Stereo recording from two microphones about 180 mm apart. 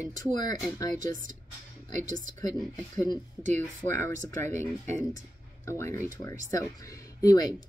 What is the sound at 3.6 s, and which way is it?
Speech, 10° left (ahead or behind).